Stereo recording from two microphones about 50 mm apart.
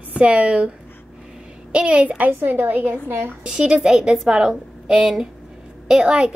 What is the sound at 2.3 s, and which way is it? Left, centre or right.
A woman's voice, right.